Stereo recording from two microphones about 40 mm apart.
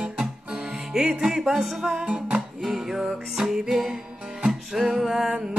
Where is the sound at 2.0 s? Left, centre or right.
Right.